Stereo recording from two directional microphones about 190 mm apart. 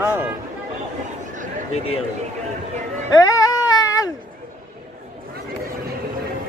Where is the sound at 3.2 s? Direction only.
20° left (ahead or behind).